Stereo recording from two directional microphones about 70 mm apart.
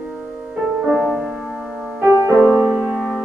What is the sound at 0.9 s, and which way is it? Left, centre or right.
Music, centre.